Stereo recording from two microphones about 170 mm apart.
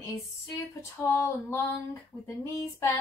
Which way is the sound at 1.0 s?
15° left (ahead or behind).